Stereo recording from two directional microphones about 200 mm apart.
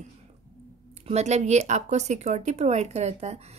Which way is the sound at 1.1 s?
35° right (ahead or behind).